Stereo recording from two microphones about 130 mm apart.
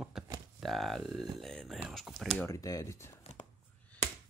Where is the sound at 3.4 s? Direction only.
70° left (ahead or behind).